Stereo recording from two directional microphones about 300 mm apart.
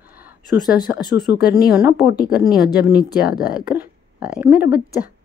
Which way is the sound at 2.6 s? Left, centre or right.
Left.